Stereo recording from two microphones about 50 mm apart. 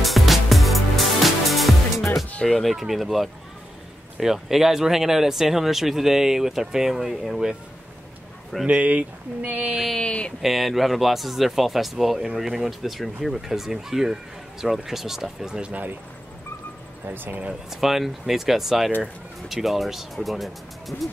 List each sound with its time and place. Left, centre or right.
0.0 s music: centre
2.4 s speech: centre
8.6 s speech: right
9.6 s speech: centre
9.9 s speech: left
10.4 s speech: centre
15.7 s speech: right
17.1 s speech: right
17.6 s speech: centre